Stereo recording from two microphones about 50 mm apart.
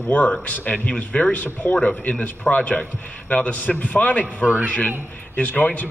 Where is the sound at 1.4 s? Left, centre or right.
Left.